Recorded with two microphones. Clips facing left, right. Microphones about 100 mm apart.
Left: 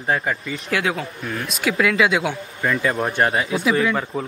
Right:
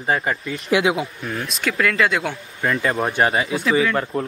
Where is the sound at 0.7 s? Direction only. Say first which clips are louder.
Right 4 dB; 20° right (ahead or behind).